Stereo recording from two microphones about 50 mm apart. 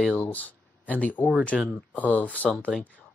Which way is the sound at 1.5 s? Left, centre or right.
Centre.